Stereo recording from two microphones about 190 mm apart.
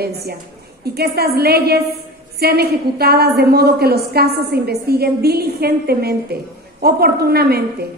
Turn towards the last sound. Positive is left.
turn(degrees=-55)  # may be behind; listen again after turning